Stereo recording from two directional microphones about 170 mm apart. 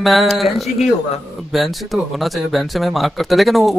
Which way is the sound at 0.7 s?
40° left (ahead or behind).